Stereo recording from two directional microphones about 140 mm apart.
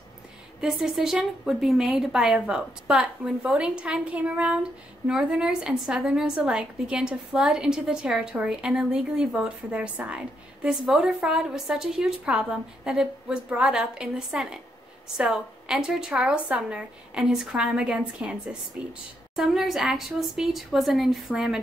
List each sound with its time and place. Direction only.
0.6 s a woman's voice: 5° right (ahead or behind)